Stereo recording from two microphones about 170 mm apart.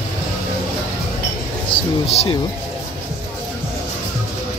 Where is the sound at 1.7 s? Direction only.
35° left (ahead or behind).